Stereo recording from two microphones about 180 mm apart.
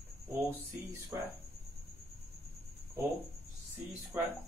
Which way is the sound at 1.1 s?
20° right (ahead or behind).